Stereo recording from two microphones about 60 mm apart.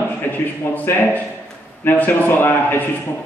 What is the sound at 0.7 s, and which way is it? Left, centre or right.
Speech, left.